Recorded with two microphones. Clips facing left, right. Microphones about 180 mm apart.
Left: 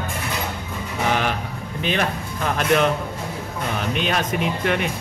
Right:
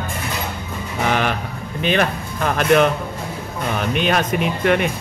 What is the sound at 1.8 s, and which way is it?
Speech, 65° right (ahead or behind).